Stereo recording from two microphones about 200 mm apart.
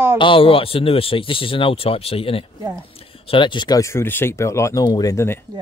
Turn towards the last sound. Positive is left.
turn(degrees=15)  # may be behind; listen again after turning